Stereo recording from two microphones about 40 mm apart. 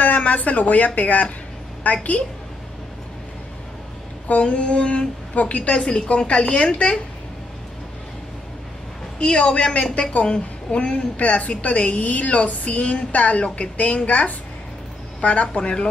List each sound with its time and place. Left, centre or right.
0.0 s a woman's voice: left
4.4 s a woman's voice: left
5.3 s a woman's voice: left
5.8 s a woman's voice: left
9.2 s a woman's voice: left